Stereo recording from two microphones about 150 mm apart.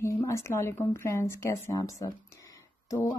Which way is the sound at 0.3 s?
20° left (ahead or behind).